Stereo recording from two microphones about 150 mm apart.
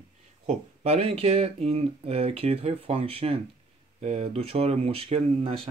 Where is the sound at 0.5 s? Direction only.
45° right (ahead or behind).